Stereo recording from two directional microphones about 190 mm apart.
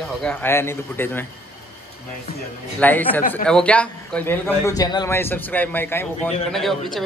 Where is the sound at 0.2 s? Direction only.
10° left (ahead or behind).